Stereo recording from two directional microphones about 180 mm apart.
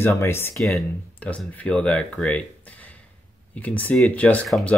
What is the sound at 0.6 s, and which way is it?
Speech, centre (ahead or behind).